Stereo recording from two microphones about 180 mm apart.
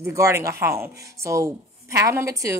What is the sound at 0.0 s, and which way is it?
A woman's voice, 15° right (ahead or behind).